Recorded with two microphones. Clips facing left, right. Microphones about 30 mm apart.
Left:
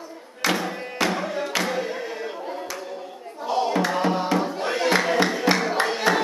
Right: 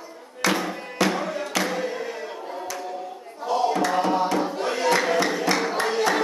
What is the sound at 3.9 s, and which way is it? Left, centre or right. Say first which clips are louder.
Music: right 1 dB; centre.